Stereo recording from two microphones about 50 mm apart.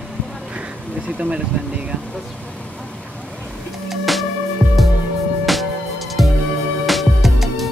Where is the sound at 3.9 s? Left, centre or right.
Centre.